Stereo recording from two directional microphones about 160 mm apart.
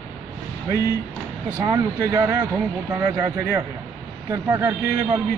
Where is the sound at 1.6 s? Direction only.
20° right (ahead or behind).